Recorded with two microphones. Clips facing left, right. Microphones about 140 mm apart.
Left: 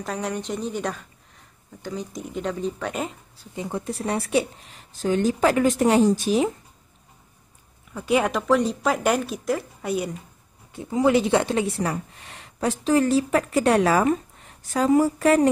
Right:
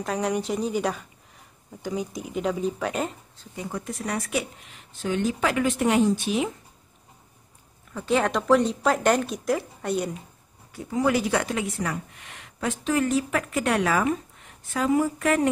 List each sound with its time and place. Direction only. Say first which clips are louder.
0.0 s speech: right 2 dB; centre (ahead or behind)
3.5 s speech: left 3 dB; 25° left (ahead or behind)
7.9 s speech: left 1 dB; 10° left (ahead or behind)
10.7 s speech: left 4 dB; 20° left (ahead or behind)